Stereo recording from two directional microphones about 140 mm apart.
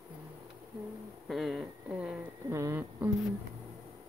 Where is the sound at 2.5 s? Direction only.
20° right (ahead or behind).